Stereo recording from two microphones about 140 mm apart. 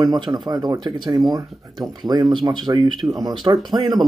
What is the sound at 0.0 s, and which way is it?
Speech, 30° right (ahead or behind).